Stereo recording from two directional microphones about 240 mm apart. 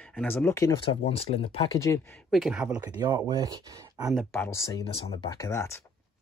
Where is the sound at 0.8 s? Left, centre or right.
Left.